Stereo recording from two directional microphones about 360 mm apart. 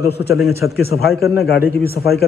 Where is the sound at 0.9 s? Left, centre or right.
Left.